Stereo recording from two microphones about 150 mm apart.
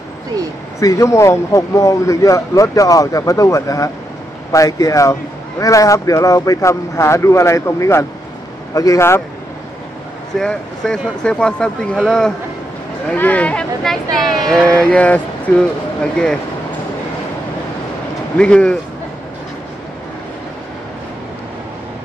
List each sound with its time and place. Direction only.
0.7 s speech: 20° left (ahead or behind)
10.3 s speech: 5° left (ahead or behind)
18.4 s speech: 5° left (ahead or behind)